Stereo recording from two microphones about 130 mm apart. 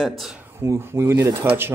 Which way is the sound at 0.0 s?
Centre (ahead or behind).